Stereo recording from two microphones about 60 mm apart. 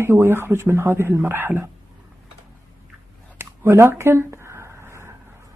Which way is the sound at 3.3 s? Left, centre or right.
Right.